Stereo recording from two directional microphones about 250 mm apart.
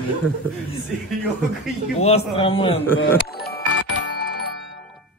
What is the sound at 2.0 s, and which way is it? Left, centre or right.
Speech, left.